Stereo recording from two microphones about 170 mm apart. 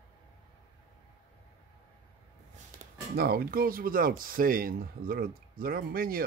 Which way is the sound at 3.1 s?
65° right (ahead or behind).